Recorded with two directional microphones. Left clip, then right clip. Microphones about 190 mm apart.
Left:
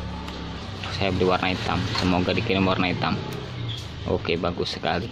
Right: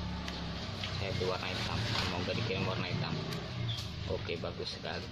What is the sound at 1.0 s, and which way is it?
Speech, 55° left (ahead or behind).